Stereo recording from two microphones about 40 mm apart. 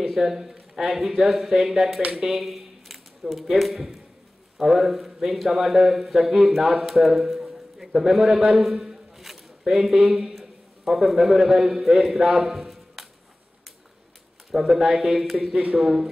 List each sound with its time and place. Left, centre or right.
0.0 s speech: centre
2.4 s a man's voice: centre
11.8 s speech: centre
12.5 s a sound: centre
14.5 s speech: centre
15.8 s speech: right